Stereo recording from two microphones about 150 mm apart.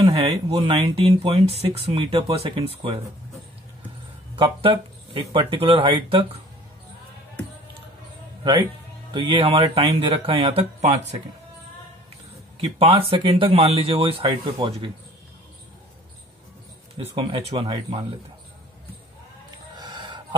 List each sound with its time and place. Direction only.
0.0 s speech: 40° right (ahead or behind)
4.4 s speech: 35° right (ahead or behind)
9.1 s speech: 40° right (ahead or behind)
12.5 s speech: 40° right (ahead or behind)
17.0 s speech: 40° right (ahead or behind)
19.7 s a sound: 30° right (ahead or behind)